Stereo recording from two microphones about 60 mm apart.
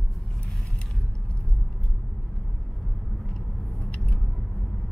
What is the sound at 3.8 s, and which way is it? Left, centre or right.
Vehicle, left.